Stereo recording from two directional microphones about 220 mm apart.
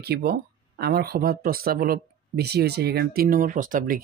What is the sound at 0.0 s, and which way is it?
Speech, 45° right (ahead or behind).